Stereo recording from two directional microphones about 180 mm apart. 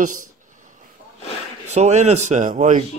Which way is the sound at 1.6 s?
40° right (ahead or behind).